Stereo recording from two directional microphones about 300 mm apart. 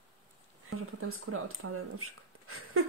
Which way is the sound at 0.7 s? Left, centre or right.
Right.